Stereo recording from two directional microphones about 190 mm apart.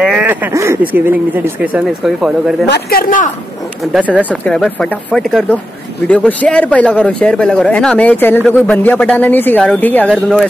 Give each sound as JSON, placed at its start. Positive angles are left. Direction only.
{"t": 0.0, "sound": "speech", "side_deg": -5}
{"t": 2.6, "sound": "speech", "side_deg": 55}
{"t": 3.8, "sound": "speech", "side_deg": 0}